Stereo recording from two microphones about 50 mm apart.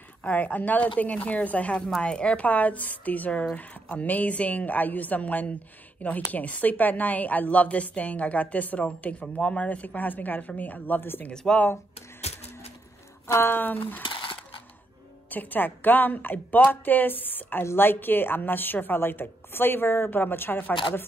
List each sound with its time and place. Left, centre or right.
0.2 s a woman's voice: left
11.0 s a woman's voice: left
11.4 s speech: centre
13.3 s a woman's voice: left
15.2 s a woman's voice: left